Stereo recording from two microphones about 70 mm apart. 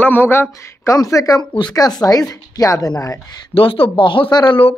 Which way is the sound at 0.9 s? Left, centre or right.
Left.